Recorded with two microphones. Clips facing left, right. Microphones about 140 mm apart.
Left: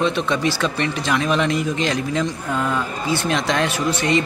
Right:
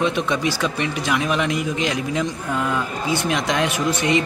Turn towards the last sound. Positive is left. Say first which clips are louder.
# even
turn(degrees=-15)  # may be behind; listen again after turning